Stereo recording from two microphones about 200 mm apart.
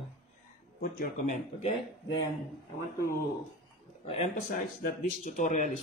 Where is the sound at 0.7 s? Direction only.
45° left (ahead or behind).